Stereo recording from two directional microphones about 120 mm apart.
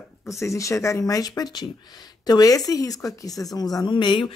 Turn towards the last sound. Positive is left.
turn(degrees=45)  # may be behind; listen again after turning